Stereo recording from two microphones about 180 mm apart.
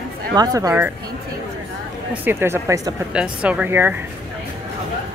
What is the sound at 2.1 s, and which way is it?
Speech, 10° right (ahead or behind).